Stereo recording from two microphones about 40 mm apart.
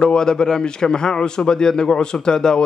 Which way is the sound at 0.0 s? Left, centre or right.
Centre.